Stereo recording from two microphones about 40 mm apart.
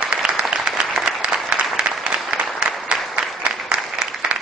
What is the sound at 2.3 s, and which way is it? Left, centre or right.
Applause, right.